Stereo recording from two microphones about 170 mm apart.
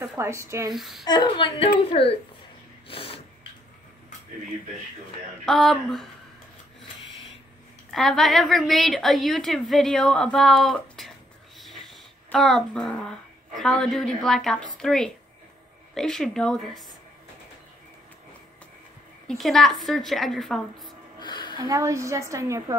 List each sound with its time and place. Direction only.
0.2 s a woman's voice: 15° right (ahead or behind)
0.7 s a woman's voice: centre (ahead or behind)
1.0 s a woman's voice: 25° left (ahead or behind)
2.9 s snort: 35° left (ahead or behind)
5.4 s a woman's voice: centre (ahead or behind)
7.9 s a woman's voice: centre (ahead or behind)
19.2 s a woman's voice: centre (ahead or behind)
21.2 s a sound: 25° left (ahead or behind)
21.5 s a woman's voice: 20° right (ahead or behind)